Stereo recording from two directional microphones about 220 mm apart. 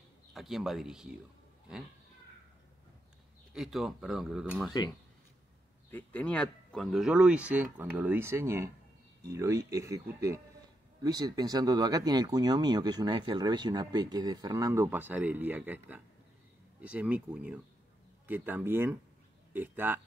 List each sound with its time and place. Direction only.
0.3 s speech: centre (ahead or behind)
3.5 s speech: centre (ahead or behind)
5.9 s speech: 5° left (ahead or behind); by 20.0 s 10° right (ahead or behind)